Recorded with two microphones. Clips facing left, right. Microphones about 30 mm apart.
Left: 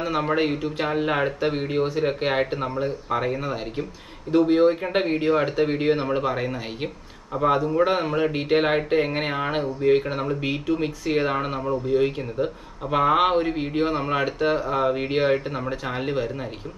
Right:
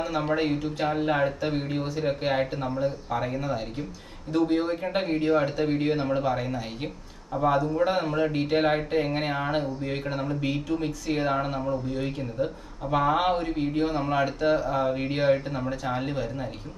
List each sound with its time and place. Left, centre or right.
0.0 s speech: left